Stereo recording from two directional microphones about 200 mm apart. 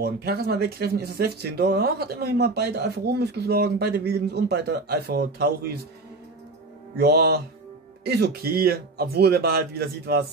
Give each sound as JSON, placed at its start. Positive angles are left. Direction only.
{"t": 0.0, "sound": "speech", "side_deg": -55}
{"t": 7.0, "sound": "speech", "side_deg": -55}